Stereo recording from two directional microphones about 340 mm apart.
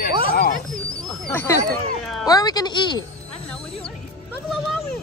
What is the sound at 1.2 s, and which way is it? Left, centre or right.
A woman's voice, centre.